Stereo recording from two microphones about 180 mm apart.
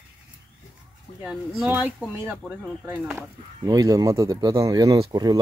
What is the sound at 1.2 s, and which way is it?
Speech, centre (ahead or behind).